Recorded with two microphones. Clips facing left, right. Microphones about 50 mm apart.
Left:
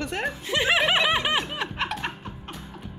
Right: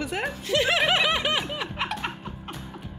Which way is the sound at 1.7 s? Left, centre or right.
Centre.